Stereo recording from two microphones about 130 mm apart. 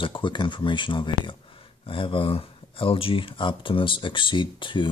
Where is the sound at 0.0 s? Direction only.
40° left (ahead or behind).